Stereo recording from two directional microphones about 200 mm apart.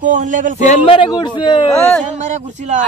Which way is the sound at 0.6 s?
30° left (ahead or behind).